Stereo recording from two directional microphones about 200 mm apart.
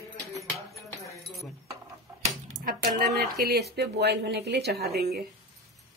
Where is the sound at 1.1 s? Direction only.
Centre (ahead or behind).